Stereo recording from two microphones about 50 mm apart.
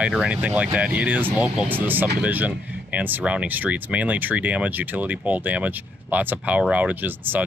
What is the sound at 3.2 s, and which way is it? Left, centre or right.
Speech, right.